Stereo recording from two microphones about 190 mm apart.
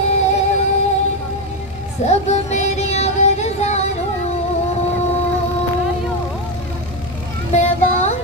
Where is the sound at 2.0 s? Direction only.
35° left (ahead or behind).